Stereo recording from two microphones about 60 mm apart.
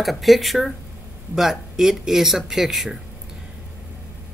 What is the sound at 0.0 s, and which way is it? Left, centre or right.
Speech, centre.